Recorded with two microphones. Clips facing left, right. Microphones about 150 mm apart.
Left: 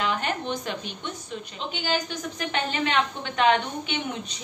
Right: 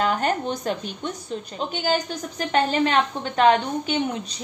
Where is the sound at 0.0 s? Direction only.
40° right (ahead or behind).